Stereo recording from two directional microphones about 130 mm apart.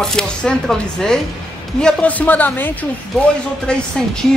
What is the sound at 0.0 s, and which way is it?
Speech, 5° left (ahead or behind).